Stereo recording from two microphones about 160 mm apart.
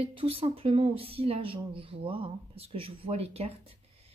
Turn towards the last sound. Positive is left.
turn(degrees=-40)  # may be behind; listen again after turning